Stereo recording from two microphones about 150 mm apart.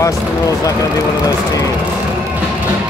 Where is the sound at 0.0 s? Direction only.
20° left (ahead or behind).